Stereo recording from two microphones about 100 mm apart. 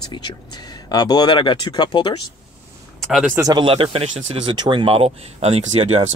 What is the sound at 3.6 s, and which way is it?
Speech, 70° right (ahead or behind).